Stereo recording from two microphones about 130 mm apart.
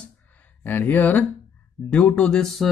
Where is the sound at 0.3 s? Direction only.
15° left (ahead or behind).